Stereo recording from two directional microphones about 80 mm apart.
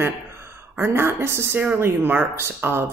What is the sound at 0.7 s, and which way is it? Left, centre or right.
Speech, right.